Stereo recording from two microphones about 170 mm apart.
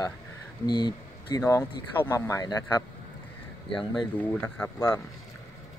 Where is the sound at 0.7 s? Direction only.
25° left (ahead or behind).